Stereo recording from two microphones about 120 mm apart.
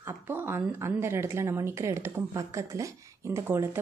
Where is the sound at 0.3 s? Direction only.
20° right (ahead or behind).